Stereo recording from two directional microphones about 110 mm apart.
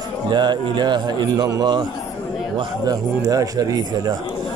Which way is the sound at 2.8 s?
35° right (ahead or behind).